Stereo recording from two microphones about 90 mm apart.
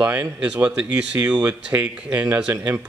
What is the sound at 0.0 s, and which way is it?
Speech, 20° right (ahead or behind).